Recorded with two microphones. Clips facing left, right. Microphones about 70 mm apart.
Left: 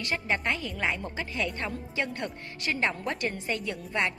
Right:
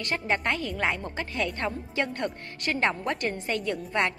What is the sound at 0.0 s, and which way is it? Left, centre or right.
A woman's voice, right.